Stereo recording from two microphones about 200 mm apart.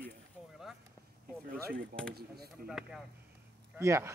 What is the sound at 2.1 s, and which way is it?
Speech, 50° right (ahead or behind).